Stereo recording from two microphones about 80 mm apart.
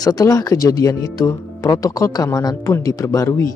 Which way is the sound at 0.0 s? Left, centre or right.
Left.